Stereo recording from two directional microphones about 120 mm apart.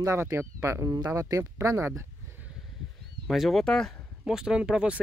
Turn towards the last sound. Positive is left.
turn(degrees=-5)  # may be behind; listen again after turning